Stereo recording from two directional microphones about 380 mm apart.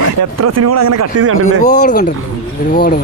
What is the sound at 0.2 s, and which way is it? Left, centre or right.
Speech, right.